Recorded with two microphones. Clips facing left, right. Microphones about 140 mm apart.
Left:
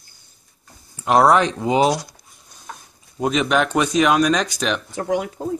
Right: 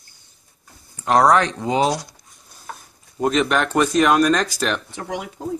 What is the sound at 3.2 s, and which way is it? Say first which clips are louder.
Speech: even; 5° left (ahead or behind).